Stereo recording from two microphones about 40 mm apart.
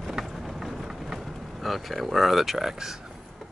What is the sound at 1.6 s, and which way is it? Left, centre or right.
Speech, centre.